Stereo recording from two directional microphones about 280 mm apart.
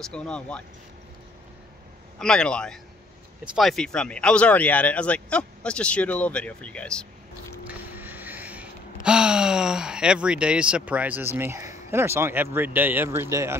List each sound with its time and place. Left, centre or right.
0.0 s speech: centre
2.1 s speech: centre
7.6 s a sound: centre